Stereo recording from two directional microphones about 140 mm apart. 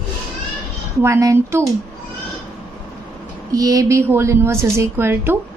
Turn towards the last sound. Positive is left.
turn(degrees=-15)  # may be behind; listen again after turning